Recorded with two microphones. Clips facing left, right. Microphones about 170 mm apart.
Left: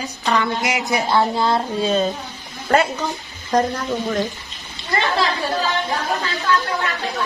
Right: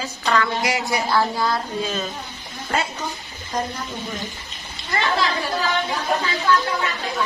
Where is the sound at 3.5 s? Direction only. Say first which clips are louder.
Left 8 dB; 70° left (ahead or behind).